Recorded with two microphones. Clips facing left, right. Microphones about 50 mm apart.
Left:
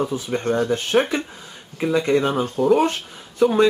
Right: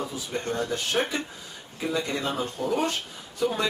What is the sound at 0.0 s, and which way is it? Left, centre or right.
Speech, left.